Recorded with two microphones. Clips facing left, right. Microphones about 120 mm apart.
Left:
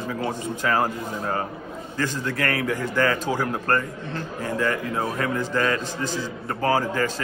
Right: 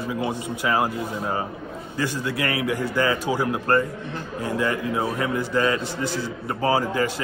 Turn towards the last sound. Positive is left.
turn(degrees=-15)  # may be behind; listen again after turning